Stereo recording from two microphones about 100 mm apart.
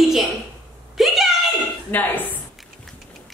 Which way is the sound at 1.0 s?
Centre (ahead or behind).